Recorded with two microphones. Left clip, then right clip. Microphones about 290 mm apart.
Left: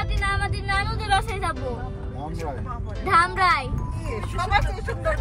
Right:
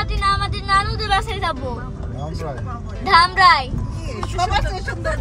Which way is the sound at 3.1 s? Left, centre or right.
Centre.